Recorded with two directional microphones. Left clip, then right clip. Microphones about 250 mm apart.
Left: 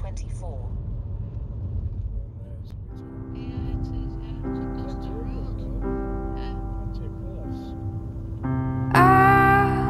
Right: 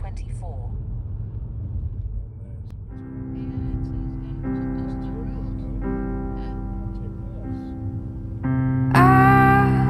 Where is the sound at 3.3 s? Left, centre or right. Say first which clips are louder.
Right 1 dB; centre.